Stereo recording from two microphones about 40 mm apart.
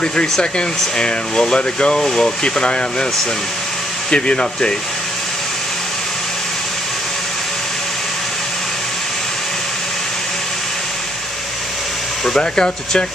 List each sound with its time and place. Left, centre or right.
0.0 s speech: left
4.1 s speech: left
12.4 s speech: centre